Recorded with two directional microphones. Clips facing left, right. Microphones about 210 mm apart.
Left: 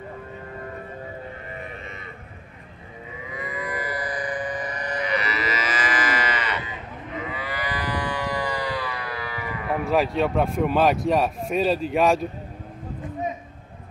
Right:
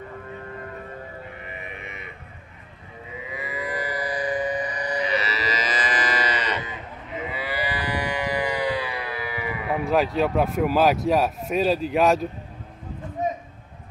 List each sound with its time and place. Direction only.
3.4 s music: 25° right (ahead or behind)
5.0 s livestock: 25° right (ahead or behind)
7.3 s livestock: 25° right (ahead or behind)
9.7 s speech: centre (ahead or behind)